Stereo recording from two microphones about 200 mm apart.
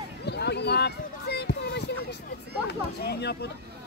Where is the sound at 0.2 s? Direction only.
55° left (ahead or behind).